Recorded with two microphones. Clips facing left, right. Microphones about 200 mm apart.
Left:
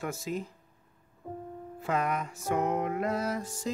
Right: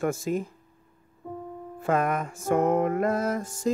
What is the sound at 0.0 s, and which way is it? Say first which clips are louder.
Music: right 7 dB; 50° right (ahead or behind).